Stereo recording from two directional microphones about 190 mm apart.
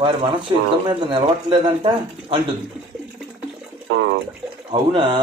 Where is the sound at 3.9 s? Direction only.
70° right (ahead or behind).